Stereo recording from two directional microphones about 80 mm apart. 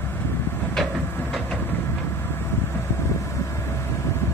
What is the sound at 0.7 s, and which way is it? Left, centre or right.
Vehicle, centre.